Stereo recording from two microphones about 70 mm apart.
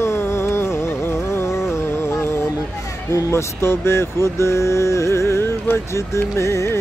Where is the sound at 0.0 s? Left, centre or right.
Left.